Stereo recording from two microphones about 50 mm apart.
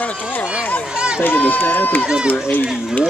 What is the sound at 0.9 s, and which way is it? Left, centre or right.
Speech, centre.